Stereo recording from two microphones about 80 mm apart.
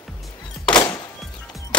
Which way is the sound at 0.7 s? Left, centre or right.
Left.